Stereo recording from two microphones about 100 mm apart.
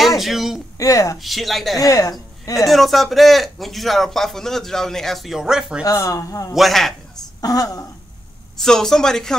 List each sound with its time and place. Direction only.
0.2 s a sound: centre (ahead or behind)
0.7 s speech: 35° left (ahead or behind)
1.1 s a man's voice: centre (ahead or behind)
1.8 s a woman's voice: 35° left (ahead or behind)
2.7 s a man's voice: centre (ahead or behind)
5.9 s speech: 35° left (ahead or behind)
6.5 s a man's voice: centre (ahead or behind)
7.4 s speech: 40° left (ahead or behind)
8.5 s a man's voice: 5° left (ahead or behind)